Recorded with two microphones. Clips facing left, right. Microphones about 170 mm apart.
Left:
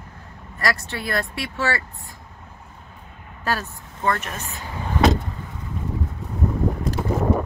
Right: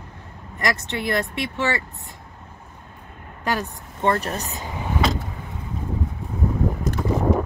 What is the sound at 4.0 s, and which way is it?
Speech, 30° right (ahead or behind).